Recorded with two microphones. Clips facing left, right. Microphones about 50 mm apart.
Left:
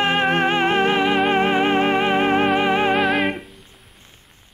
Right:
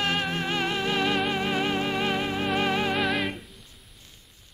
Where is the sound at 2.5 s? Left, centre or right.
Left.